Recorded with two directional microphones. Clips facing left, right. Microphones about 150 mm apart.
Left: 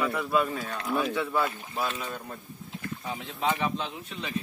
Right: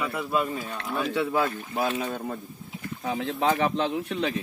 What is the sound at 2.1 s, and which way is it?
Speech, 55° right (ahead or behind).